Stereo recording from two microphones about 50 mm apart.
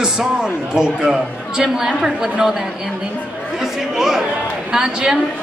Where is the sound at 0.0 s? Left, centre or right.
Centre.